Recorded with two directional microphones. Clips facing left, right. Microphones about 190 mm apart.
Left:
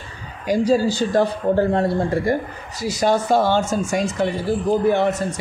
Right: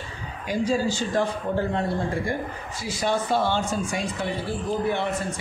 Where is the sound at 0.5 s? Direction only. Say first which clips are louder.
Left 6 dB; 35° left (ahead or behind).